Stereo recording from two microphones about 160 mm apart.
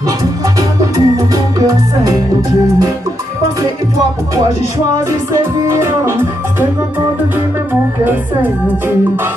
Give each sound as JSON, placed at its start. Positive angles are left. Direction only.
{"t": 0.2, "sound": "music", "side_deg": -20}
{"t": 5.3, "sound": "music", "side_deg": -15}
{"t": 8.0, "sound": "speech", "side_deg": -10}